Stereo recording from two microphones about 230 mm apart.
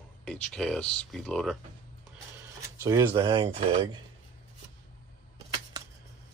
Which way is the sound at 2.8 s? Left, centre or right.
Centre.